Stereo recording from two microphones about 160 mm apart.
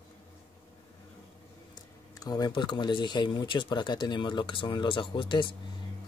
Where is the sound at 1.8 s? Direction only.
25° left (ahead or behind).